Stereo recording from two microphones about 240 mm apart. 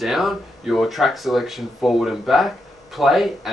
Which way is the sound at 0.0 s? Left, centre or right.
Centre.